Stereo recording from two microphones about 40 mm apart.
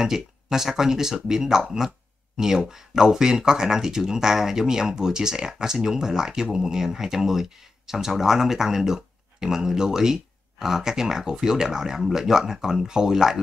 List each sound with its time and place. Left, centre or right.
0.0 s speech: centre